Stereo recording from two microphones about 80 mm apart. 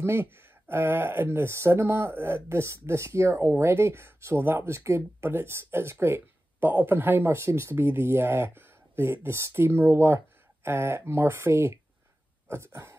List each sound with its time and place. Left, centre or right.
0.0 s speech: right